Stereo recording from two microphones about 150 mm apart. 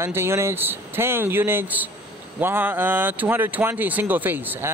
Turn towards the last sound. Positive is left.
turn(degrees=-10)  # may be behind; listen again after turning